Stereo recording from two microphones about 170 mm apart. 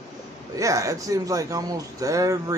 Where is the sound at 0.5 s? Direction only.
20° right (ahead or behind).